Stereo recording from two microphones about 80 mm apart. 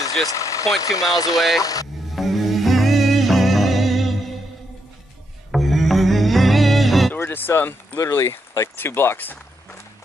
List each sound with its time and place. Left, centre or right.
0.3 s speech: left
2.1 s music: centre
5.5 s music: centre
7.2 s a sound: left
8.0 s speech: left